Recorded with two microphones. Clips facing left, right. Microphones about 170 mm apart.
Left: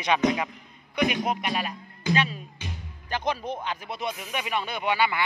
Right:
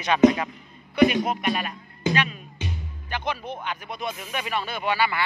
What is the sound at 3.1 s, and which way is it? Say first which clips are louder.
Speech: left 1 dB; 35° left (ahead or behind).